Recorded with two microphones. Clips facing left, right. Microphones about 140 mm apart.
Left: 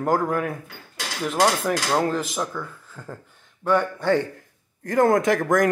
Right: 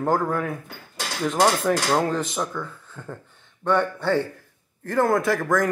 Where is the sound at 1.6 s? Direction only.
Centre (ahead or behind).